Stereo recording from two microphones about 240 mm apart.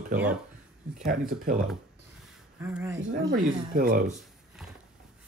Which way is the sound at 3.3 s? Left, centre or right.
Right.